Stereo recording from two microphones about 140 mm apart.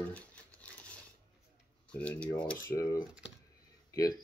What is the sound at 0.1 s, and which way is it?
Crumpling, 10° left (ahead or behind).